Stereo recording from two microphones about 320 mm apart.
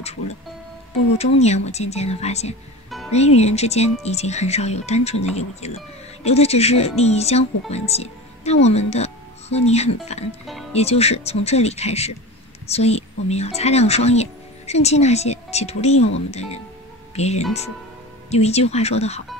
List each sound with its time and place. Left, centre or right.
0.0 s speech: centre